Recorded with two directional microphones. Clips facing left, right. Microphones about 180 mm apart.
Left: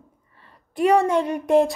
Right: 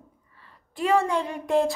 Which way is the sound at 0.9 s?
20° left (ahead or behind).